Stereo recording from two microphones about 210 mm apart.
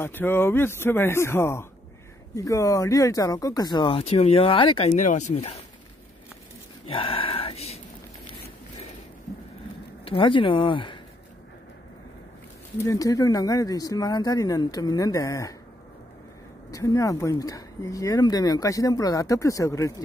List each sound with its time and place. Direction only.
0.0 s speech: 10° left (ahead or behind); by 5.5 s 30° left (ahead or behind)
6.9 s a sound: 25° left (ahead or behind)
10.0 s speech: 25° left (ahead or behind)
12.7 s speech: 15° left (ahead or behind)
16.7 s speech: 15° left (ahead or behind)